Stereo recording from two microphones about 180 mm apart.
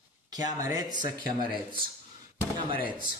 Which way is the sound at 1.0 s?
50° left (ahead or behind).